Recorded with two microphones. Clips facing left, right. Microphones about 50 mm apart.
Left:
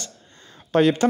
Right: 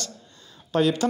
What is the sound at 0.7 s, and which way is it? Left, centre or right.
Speech, left.